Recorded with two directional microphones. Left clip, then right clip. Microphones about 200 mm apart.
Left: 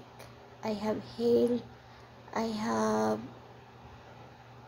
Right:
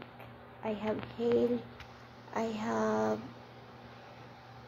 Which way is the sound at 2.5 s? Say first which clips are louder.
Left 2 dB; 15° left (ahead or behind).